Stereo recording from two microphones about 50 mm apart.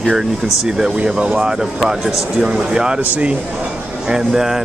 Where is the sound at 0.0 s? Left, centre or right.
Centre.